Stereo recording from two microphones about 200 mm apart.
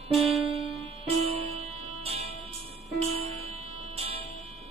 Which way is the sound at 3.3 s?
30° right (ahead or behind).